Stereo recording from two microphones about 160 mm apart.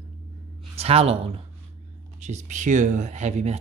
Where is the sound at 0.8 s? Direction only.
40° right (ahead or behind).